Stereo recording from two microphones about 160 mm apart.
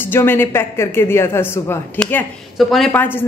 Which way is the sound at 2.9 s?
10° left (ahead or behind).